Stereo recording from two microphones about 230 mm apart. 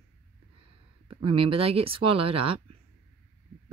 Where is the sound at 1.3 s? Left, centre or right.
Right.